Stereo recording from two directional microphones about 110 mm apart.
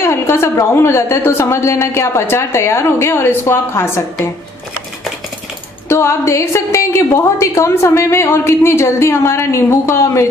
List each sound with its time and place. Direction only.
0.0 s a woman's voice: 25° left (ahead or behind)
5.9 s a woman's voice: 25° left (ahead or behind)